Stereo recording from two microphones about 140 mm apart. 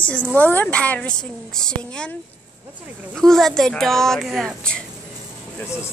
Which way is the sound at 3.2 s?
5° left (ahead or behind).